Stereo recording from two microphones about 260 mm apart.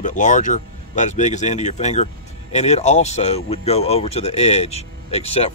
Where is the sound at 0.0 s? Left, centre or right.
Left.